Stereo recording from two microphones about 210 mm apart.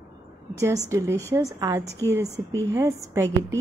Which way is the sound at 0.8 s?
15° right (ahead or behind).